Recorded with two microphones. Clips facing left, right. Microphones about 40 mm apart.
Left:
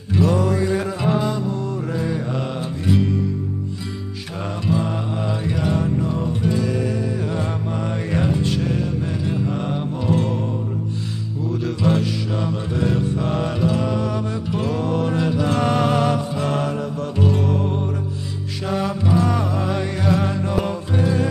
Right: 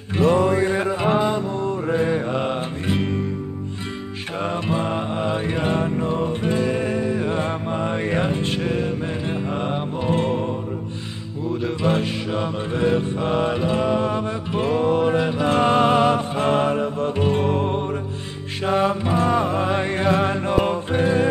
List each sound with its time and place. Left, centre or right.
0.1 s music: right
4.6 s music: right
11.6 s music: right